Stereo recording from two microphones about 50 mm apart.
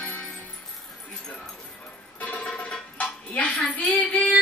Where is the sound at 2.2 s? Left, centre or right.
Left.